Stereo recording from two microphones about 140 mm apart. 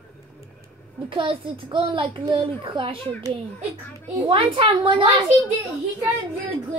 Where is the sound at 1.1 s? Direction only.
40° right (ahead or behind).